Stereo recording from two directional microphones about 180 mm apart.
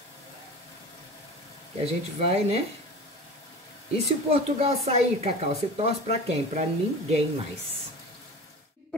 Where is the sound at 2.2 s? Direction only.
35° right (ahead or behind).